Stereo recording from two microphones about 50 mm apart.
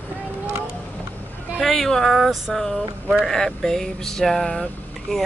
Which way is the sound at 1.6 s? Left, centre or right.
Centre.